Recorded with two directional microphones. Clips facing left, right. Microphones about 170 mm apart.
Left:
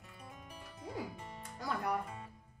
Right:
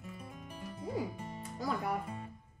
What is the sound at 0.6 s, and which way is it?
Music, centre (ahead or behind).